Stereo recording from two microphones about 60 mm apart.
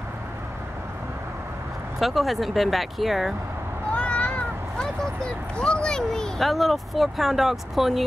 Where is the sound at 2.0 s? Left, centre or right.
Centre.